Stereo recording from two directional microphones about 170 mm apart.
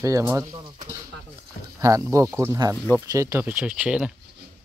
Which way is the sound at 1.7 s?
20° right (ahead or behind).